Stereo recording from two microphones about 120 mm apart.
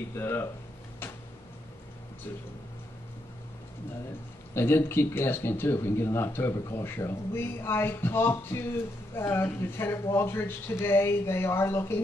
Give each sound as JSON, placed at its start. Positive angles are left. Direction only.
{"t": 0.1, "sound": "speech", "side_deg": 20}
{"t": 4.6, "sound": "speech", "side_deg": 20}